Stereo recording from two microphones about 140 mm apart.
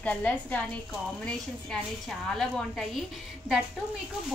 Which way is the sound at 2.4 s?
Centre (ahead or behind).